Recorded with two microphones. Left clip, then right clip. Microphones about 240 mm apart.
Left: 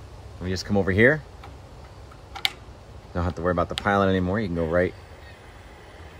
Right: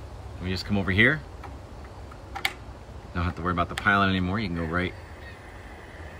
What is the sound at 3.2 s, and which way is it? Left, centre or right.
Speech, centre.